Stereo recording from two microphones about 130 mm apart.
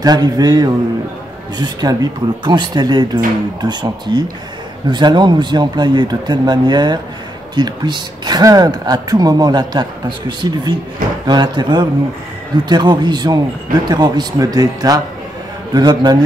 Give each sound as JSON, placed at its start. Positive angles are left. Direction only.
{"t": 0.0, "sound": "a man's voice", "side_deg": -30}